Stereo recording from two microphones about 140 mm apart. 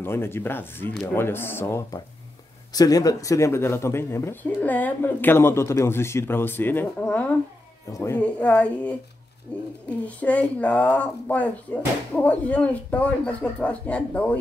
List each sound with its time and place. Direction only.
0.0 s speech: 15° left (ahead or behind)
8.2 s speech: 10° left (ahead or behind)